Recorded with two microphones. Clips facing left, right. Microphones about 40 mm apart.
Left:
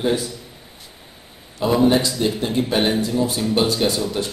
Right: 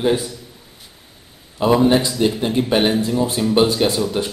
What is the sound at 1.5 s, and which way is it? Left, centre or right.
A man's voice, centre.